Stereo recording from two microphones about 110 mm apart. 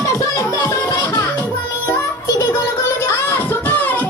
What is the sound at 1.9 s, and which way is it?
Music, 35° left (ahead or behind).